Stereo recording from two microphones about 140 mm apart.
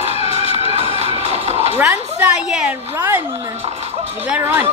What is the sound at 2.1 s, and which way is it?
Speech, 5° right (ahead or behind).